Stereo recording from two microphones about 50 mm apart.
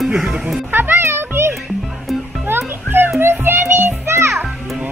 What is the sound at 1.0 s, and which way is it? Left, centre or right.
Music, right.